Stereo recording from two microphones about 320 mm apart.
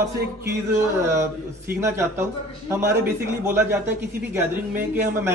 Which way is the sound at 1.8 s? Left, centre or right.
Centre.